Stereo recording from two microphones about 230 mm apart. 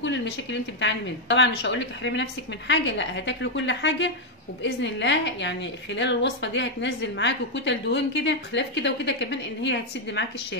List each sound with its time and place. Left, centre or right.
0.0 s a woman's voice: left